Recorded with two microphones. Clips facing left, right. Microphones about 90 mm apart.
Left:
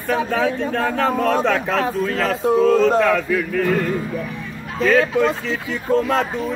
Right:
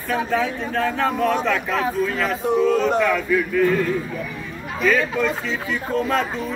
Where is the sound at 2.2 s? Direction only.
40° left (ahead or behind).